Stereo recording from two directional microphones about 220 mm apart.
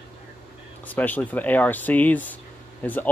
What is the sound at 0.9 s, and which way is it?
Speech, 5° left (ahead or behind).